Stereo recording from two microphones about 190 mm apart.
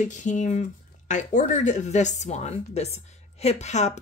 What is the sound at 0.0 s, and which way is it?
Speech, 40° left (ahead or behind).